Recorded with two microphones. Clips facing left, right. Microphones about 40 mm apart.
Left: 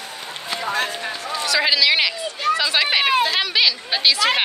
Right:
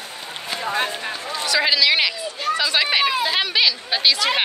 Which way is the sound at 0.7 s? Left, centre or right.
Right.